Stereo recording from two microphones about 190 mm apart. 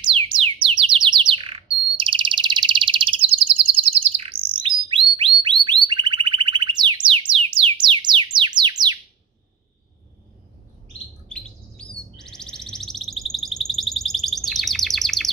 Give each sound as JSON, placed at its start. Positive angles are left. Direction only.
{"t": 0.0, "sound": "bird", "side_deg": -30}
{"t": 5.9, "sound": "music", "side_deg": -25}
{"t": 11.2, "sound": "chirp", "side_deg": 5}